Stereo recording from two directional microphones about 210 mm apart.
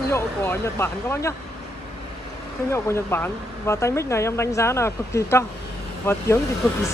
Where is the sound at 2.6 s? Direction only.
10° left (ahead or behind).